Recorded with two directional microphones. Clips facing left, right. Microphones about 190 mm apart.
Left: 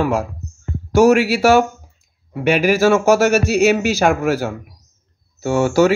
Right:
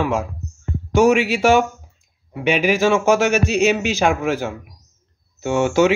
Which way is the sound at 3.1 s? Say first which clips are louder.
Left 3 dB; 40° left (ahead or behind).